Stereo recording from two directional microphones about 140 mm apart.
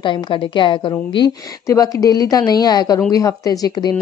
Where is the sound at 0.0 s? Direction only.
35° left (ahead or behind).